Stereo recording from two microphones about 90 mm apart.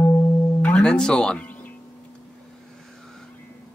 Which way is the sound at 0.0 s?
30° left (ahead or behind).